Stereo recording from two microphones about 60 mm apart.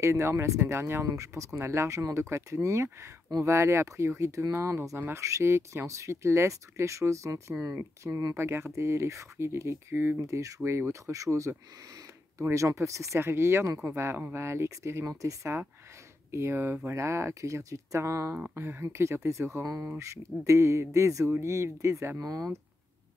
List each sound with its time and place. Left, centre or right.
0.0 s speech: right
1.0 s speech: right
8.0 s speech: right
10.1 s speech: right
15.0 s speech: right
16.3 s speech: right
18.5 s speech: right
22.2 s speech: right